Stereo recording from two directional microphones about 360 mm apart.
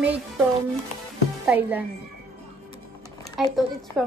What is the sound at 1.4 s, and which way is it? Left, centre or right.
Speech, centre.